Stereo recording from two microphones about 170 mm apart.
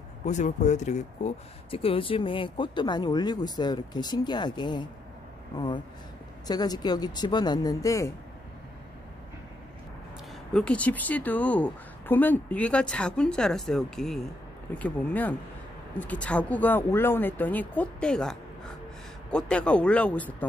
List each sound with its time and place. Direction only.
0.3 s speech: 45° left (ahead or behind); by 4.8 s 25° left (ahead or behind)
6.4 s speech: 25° left (ahead or behind)
10.5 s a woman's voice: 5° left (ahead or behind)